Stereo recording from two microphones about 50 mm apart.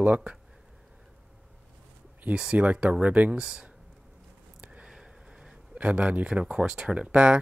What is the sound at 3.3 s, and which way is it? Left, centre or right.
Speech, centre.